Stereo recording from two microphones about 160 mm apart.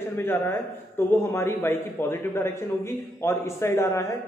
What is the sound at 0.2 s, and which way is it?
A man's voice, 15° left (ahead or behind).